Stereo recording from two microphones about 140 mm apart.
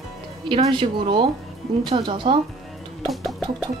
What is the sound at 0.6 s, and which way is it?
Speech, 35° right (ahead or behind).